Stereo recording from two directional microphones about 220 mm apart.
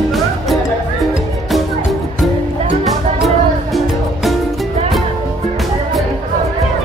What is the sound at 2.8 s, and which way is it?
Music, centre (ahead or behind).